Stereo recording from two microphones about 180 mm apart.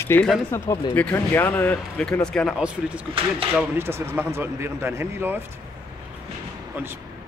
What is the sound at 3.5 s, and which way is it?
Speech, 15° right (ahead or behind).